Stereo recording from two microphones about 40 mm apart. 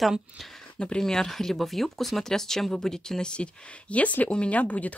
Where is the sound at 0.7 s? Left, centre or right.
Left.